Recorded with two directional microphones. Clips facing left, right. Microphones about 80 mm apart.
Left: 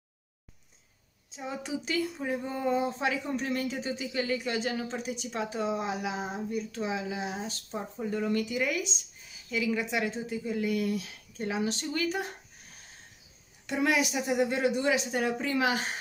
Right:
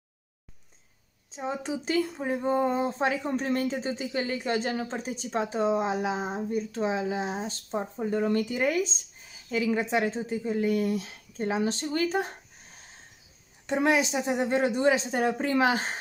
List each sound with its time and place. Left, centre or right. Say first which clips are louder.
1.3 s speech: right 4 dB; right
13.7 s speech: right 3 dB; right